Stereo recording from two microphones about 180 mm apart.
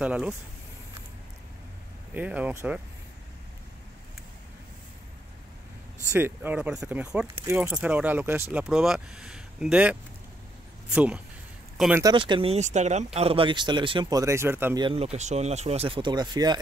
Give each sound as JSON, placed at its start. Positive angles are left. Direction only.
{"t": 0.0, "sound": "speech", "side_deg": -10}
{"t": 2.1, "sound": "speech", "side_deg": -10}
{"t": 6.1, "sound": "speech", "side_deg": -10}
{"t": 12.0, "sound": "speech", "side_deg": -25}
{"t": 14.8, "sound": "speech", "side_deg": -30}